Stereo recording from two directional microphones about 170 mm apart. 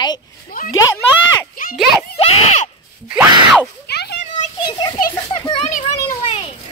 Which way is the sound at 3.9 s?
70° left (ahead or behind).